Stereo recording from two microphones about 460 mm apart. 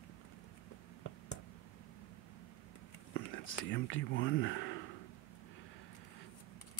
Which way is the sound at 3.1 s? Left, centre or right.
Left.